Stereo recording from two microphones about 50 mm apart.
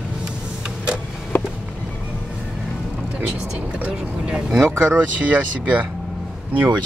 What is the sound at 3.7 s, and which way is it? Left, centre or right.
Speech, right.